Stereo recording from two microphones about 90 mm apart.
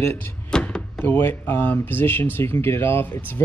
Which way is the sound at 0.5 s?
10° left (ahead or behind).